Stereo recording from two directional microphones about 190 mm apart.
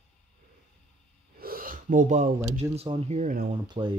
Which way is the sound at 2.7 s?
30° right (ahead or behind).